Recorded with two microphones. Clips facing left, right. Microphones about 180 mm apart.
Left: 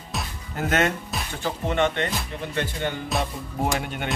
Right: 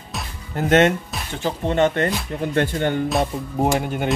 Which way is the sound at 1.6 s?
35° right (ahead or behind).